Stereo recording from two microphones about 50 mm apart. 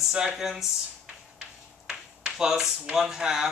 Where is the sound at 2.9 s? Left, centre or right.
Centre.